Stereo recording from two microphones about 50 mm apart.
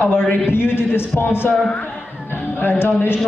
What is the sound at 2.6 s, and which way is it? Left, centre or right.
Speech, left.